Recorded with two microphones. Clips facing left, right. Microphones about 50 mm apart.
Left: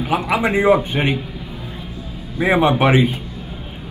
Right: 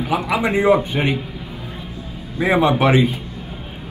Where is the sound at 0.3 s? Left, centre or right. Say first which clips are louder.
Left 1 dB; left.